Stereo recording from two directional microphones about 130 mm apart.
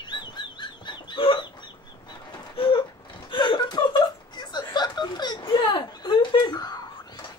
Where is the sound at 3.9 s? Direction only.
35° left (ahead or behind).